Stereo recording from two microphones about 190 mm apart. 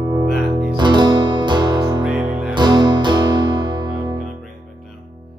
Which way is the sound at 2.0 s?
5° right (ahead or behind).